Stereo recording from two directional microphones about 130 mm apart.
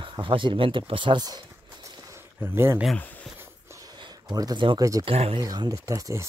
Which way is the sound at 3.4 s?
25° right (ahead or behind).